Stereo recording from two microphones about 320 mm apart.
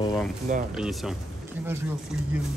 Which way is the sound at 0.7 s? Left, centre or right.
Centre.